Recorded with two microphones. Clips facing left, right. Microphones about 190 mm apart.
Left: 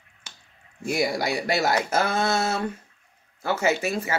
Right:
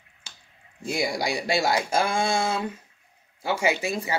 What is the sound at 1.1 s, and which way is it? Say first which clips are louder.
Speech: left 1 dB; 15° right (ahead or behind).